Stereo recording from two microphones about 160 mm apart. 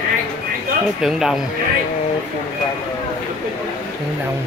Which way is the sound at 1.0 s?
Centre (ahead or behind).